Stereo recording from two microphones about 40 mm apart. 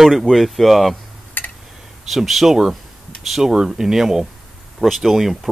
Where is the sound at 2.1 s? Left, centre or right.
Centre.